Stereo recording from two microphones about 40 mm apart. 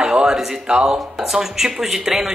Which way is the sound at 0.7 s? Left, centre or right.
Right.